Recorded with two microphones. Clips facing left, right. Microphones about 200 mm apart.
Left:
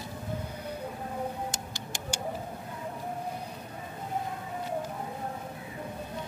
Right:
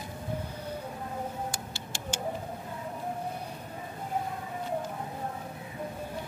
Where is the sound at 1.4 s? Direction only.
15° left (ahead or behind).